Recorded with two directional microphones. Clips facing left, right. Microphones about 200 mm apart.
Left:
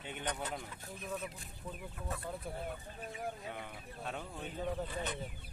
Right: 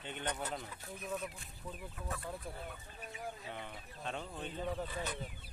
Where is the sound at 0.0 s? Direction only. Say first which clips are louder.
Even; 10° left (ahead or behind).